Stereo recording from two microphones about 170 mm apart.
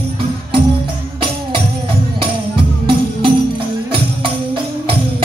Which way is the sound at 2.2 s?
30° right (ahead or behind).